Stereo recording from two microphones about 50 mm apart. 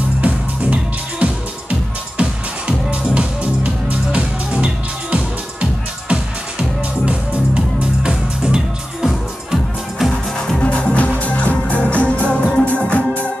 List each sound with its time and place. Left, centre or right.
0.2 s music: right; by 10.1 s centre
10.1 s music: centre
10.6 s music: left